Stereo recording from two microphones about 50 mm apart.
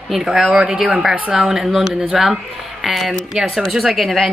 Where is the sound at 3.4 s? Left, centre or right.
Centre.